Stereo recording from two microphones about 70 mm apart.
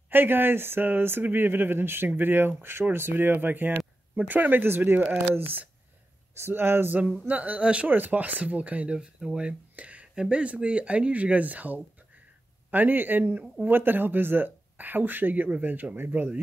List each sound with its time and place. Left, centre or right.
0.1 s speech: right
7.2 s speech: right